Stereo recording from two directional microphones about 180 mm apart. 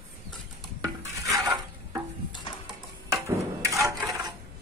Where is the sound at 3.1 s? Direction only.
15° right (ahead or behind).